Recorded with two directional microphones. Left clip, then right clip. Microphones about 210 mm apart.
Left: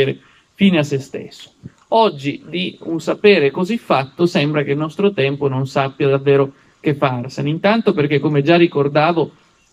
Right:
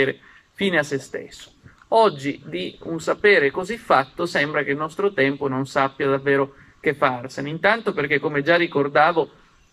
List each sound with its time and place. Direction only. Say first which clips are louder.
0.0 s speech: left 4 dB; 5° left (ahead or behind)